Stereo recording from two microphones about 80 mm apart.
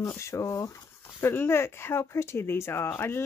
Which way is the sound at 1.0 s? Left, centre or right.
Left.